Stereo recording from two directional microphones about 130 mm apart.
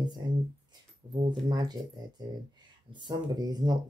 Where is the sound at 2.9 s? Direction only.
30° right (ahead or behind).